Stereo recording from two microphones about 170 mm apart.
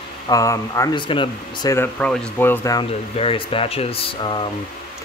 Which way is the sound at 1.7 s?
10° left (ahead or behind).